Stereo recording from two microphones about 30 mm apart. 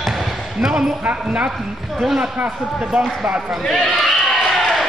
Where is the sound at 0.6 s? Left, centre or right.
Centre.